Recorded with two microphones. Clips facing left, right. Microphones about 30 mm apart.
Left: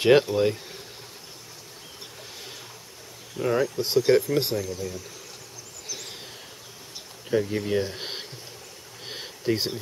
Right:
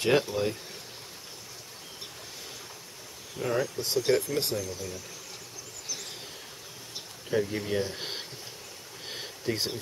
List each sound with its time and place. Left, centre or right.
0.0 s speech: left
3.3 s speech: centre
7.2 s speech: centre
9.0 s a sound: centre